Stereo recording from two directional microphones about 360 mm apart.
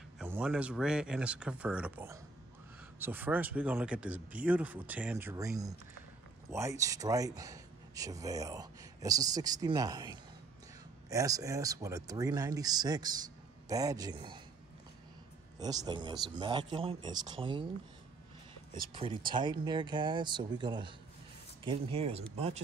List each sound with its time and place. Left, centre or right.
0.2 s speech: centre
15.6 s speech: centre
18.7 s speech: centre